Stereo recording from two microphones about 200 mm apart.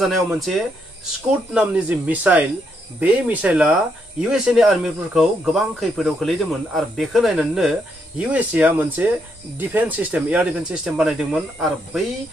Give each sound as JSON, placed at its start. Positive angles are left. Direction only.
{"t": 0.0, "sound": "speech", "side_deg": 0}